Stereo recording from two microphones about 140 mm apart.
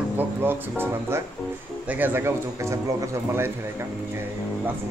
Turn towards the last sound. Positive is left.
turn(degrees=-20)  # may be behind; listen again after turning